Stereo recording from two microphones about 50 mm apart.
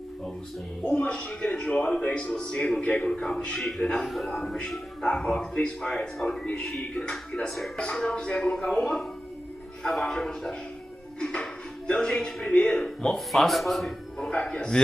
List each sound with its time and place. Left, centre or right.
1.0 s a man's voice: centre
4.0 s a man's voice: centre
7.0 s speech: centre
7.4 s a man's voice: centre
11.1 s music: centre
11.9 s a man's voice: centre
12.4 s a man's voice: centre
14.2 s a man's voice: centre